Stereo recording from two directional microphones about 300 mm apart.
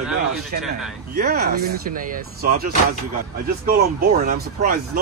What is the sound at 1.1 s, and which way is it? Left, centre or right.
Speech, right.